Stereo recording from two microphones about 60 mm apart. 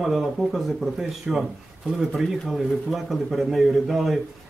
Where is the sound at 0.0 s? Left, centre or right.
Centre.